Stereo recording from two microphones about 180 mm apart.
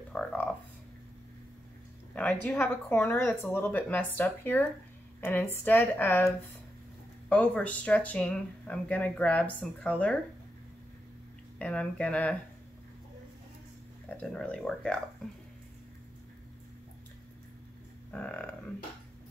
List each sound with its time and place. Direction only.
0.1 s speech: 5° left (ahead or behind)
2.1 s speech: 10° left (ahead or behind)
11.5 s speech: 5° left (ahead or behind)
14.1 s speech: 5° left (ahead or behind)
18.1 s speech: 10° left (ahead or behind)